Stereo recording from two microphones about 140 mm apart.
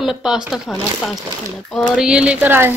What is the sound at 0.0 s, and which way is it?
Speech, 5° right (ahead or behind).